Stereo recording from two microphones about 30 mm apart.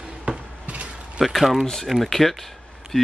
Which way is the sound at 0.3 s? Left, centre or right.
Right.